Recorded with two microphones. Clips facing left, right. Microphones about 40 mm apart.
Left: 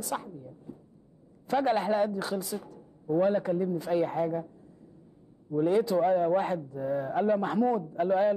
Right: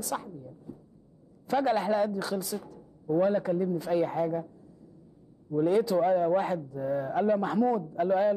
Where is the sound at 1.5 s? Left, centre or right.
Centre.